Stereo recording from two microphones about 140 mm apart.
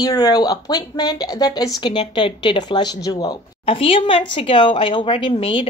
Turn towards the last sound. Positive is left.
turn(degrees=40)  # may be behind; listen again after turning